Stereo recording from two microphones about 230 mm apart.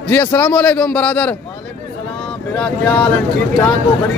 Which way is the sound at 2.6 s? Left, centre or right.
Centre.